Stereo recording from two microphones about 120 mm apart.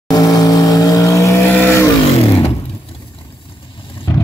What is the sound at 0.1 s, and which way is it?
Vehicle, 30° left (ahead or behind).